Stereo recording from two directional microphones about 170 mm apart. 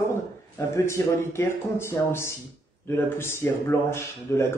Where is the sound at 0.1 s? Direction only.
15° left (ahead or behind).